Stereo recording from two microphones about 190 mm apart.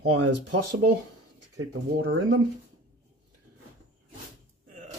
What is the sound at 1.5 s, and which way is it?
Speech, 80° right.